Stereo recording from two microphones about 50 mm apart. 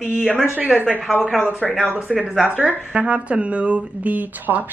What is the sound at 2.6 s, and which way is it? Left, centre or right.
Speech, right.